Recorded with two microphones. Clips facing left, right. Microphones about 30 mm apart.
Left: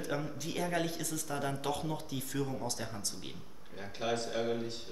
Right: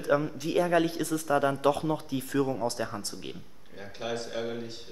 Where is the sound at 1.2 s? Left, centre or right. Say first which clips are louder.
Right 12 dB; right.